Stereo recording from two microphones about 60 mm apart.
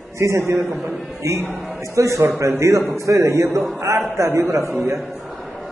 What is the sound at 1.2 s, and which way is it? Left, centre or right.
A man's voice, right.